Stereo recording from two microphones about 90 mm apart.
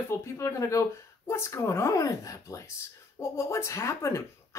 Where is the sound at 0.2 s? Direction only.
35° left (ahead or behind).